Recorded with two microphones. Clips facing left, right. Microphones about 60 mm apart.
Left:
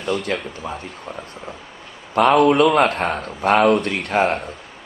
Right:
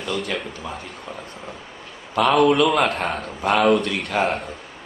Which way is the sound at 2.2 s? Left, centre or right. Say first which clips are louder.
Left 3 dB; left.